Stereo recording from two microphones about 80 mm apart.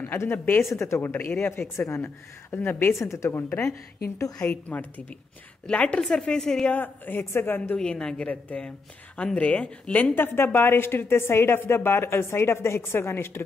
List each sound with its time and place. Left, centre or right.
0.0 s a woman's voice: left
3.0 s a woman's voice: left
4.5 s a woman's voice: left
6.7 s a woman's voice: left
7.8 s speech: centre
10.1 s a woman's voice: left